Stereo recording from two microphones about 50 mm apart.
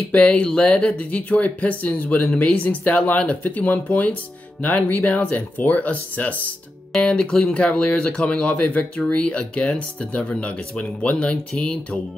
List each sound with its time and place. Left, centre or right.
0.1 s speech: left
7.0 s speech: centre